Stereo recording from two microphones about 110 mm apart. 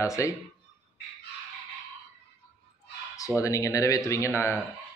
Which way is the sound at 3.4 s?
30° left (ahead or behind).